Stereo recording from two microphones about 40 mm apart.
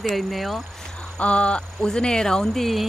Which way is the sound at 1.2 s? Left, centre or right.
Left.